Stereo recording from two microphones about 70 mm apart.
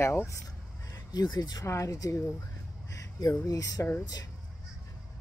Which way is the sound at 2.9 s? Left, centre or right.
Left.